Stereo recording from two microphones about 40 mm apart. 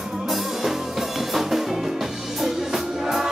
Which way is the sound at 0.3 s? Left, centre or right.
Centre.